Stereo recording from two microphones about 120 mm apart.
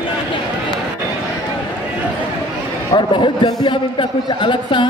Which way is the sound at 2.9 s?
40° left (ahead or behind).